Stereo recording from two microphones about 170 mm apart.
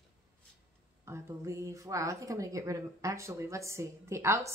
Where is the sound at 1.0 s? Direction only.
15° right (ahead or behind).